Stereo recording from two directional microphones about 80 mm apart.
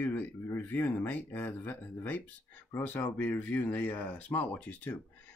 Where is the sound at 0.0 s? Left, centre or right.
Left.